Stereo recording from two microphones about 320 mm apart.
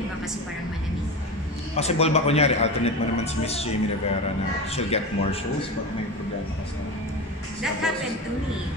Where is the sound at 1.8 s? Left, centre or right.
Centre.